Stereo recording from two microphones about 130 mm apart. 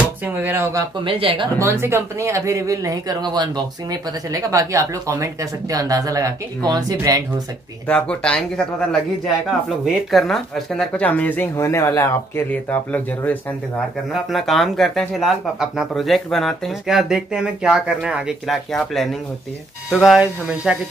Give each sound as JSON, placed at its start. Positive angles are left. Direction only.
{"t": 0.2, "sound": "speech", "side_deg": -15}
{"t": 1.0, "sound": "speech", "side_deg": -45}
{"t": 1.6, "sound": "speech", "side_deg": -20}
{"t": 7.8, "sound": "speech", "side_deg": 10}
{"t": 14.1, "sound": "speech", "side_deg": 0}